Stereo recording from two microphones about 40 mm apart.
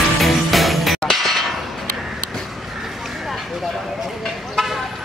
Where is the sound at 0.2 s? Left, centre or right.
Centre.